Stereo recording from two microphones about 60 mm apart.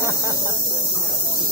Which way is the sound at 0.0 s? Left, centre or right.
Right.